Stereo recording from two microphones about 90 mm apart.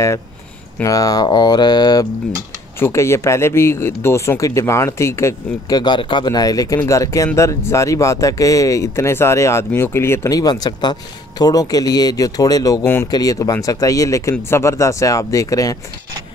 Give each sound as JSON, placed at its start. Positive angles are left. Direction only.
{"t": 0.8, "sound": "speech", "side_deg": 40}
{"t": 2.8, "sound": "speech", "side_deg": 30}
{"t": 5.7, "sound": "speech", "side_deg": 50}
{"t": 10.3, "sound": "speech", "side_deg": 50}
{"t": 12.8, "sound": "speech", "side_deg": 25}
{"t": 13.1, "sound": "speech", "side_deg": 45}